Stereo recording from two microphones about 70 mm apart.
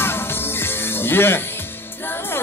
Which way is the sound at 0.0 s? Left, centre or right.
Left.